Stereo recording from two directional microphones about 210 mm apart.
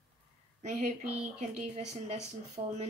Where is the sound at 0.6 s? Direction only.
35° right (ahead or behind).